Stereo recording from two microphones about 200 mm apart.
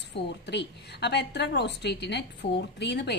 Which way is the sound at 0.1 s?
60° left (ahead or behind).